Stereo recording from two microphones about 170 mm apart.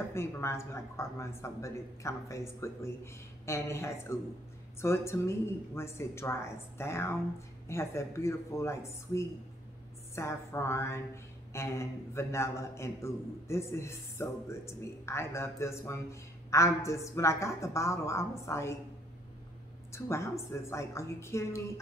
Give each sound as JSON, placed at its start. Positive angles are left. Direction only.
{"t": 0.1, "sound": "a man's voice", "side_deg": 15}
{"t": 19.9, "sound": "a man's voice", "side_deg": 15}